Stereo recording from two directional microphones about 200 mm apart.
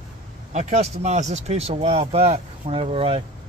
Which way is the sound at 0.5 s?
35° right (ahead or behind).